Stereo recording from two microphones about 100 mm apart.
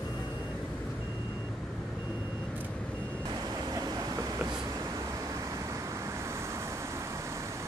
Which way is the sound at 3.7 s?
35° right (ahead or behind).